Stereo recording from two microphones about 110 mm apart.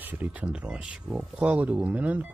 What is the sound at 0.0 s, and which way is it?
Speech, 15° right (ahead or behind).